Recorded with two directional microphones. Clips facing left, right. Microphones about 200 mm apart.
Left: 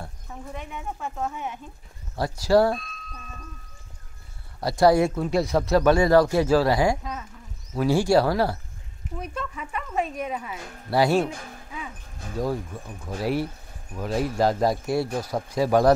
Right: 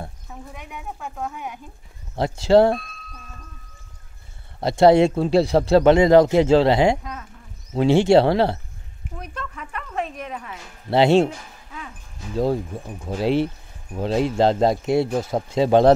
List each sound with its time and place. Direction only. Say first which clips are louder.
0.3 s speech: left 1 dB; 5° right (ahead or behind)
2.1 s speech: right 4 dB; 25° right (ahead or behind)
4.6 s speech: right 4 dB; 25° right (ahead or behind)
7.0 s speech: left 1 dB; centre (ahead or behind)
7.7 s speech: right 5 dB; 25° right (ahead or behind)
9.2 s speech: left 2 dB; 5° left (ahead or behind)
10.9 s speech: right 5 dB; 25° right (ahead or behind)
13.0 s speech: right 5 dB; 25° right (ahead or behind)